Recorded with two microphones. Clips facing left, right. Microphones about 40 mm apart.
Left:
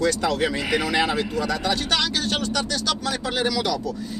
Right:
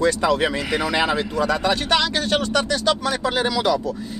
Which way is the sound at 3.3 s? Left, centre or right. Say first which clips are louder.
Right 2 dB; right.